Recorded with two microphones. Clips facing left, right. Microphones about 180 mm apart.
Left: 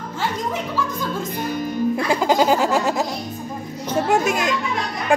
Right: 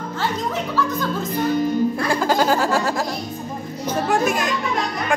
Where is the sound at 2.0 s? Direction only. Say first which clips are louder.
Left 1 dB; 20° left (ahead or behind).